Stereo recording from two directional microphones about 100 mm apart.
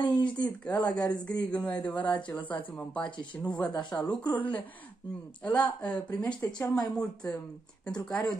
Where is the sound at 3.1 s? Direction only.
50° left (ahead or behind).